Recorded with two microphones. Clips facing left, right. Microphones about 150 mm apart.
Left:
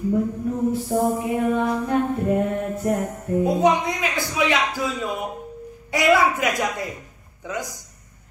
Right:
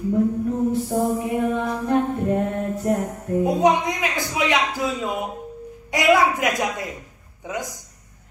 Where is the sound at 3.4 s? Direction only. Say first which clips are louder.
Right 1 dB; 15° right (ahead or behind).